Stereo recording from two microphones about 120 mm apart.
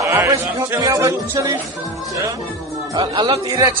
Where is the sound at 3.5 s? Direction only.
30° right (ahead or behind).